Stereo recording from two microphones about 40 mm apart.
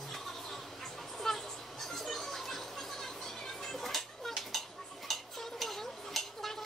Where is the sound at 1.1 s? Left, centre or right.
Centre.